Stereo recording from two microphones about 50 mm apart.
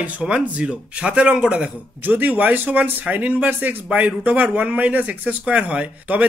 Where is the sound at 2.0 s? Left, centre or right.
Right.